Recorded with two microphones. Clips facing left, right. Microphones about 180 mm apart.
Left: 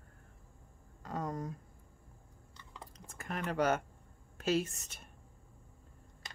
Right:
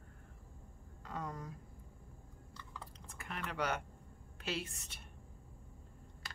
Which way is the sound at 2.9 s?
45° left (ahead or behind).